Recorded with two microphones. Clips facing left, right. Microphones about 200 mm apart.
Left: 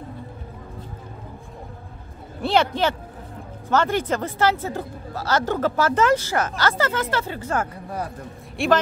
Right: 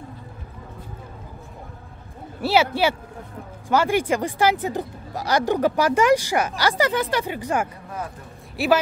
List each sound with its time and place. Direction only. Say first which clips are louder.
2.4 s speech: right 1 dB; 5° right (ahead or behind)
8.6 s speech: even; 5° right (ahead or behind)